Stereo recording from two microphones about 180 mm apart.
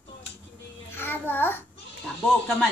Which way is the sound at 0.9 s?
10° left (ahead or behind).